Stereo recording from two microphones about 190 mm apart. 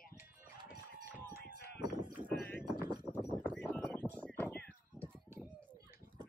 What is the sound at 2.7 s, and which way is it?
Clip-clop, 20° right (ahead or behind).